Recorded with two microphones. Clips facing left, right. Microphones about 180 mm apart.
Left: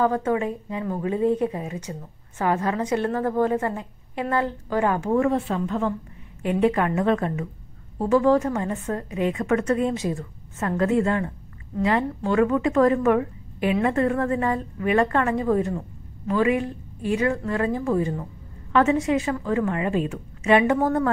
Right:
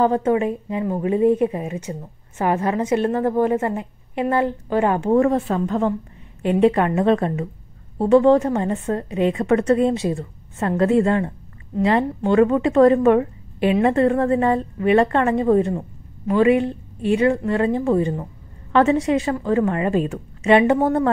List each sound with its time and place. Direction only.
0.0 s a woman's voice: 25° right (ahead or behind); by 20.2 s 40° right (ahead or behind)
20.4 s speech: 30° right (ahead or behind)